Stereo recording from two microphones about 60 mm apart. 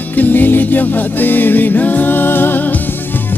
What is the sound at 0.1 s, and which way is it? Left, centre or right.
Music, left.